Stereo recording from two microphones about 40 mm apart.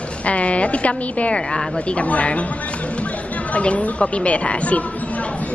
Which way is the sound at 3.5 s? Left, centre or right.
Left.